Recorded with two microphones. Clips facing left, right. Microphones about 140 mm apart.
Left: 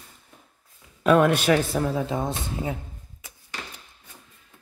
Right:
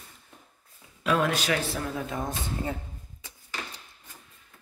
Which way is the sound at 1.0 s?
55° left (ahead or behind).